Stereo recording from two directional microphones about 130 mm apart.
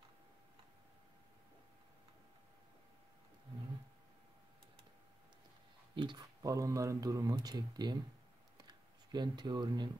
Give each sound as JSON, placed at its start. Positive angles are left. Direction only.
{"t": 5.9, "sound": "speech", "side_deg": -35}
{"t": 6.4, "sound": "speech", "side_deg": -25}
{"t": 8.5, "sound": "a sound", "side_deg": -35}